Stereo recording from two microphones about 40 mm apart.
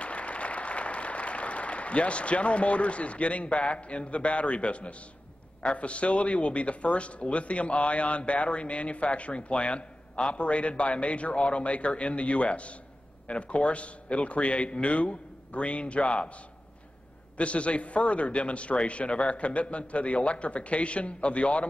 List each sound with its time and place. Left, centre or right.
0.0 s applause: left
5.6 s a man's voice: left
17.4 s a man's voice: left